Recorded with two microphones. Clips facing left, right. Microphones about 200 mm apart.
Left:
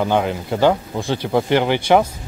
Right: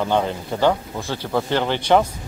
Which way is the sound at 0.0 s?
10° left (ahead or behind).